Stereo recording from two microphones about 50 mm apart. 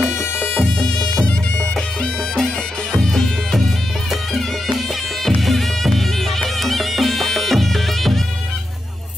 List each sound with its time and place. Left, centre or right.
0.7 s music: centre
2.3 s music: centre
4.1 s music: centre